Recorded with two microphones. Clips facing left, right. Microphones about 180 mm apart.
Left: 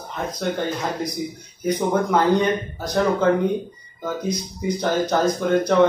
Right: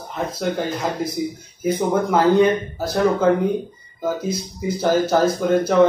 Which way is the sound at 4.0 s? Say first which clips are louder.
Right 2 dB; 5° right (ahead or behind).